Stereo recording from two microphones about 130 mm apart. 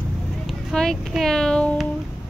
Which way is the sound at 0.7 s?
5° left (ahead or behind).